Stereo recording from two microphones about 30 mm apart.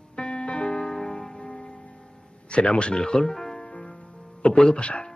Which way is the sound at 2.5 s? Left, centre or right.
Left.